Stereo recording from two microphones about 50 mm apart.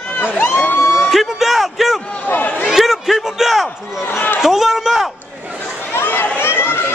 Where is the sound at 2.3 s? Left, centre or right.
Left.